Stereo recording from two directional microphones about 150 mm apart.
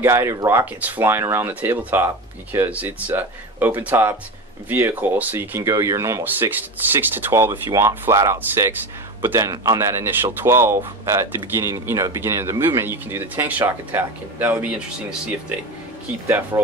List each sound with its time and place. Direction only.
0.0 s speech: 15° right (ahead or behind)
16.3 s speech: 15° right (ahead or behind)